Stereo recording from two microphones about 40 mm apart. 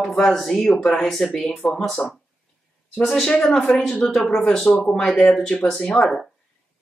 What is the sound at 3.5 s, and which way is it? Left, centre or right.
Speech, left.